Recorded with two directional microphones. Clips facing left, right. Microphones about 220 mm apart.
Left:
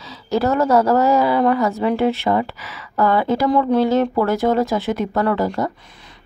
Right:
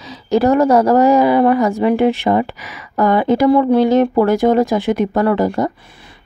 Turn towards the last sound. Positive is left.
turn(degrees=-15)  # may be behind; listen again after turning